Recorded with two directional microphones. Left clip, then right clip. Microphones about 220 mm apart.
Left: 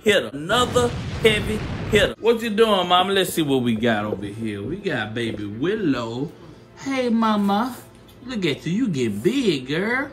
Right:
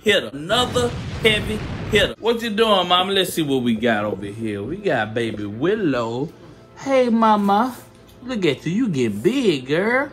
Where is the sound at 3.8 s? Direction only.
25° left (ahead or behind).